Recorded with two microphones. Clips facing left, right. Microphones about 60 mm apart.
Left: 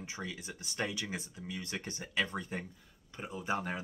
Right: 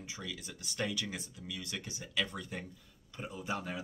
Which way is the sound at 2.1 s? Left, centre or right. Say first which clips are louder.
Left 2 dB; left.